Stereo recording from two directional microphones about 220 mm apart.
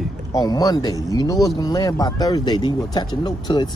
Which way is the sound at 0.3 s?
15° left (ahead or behind).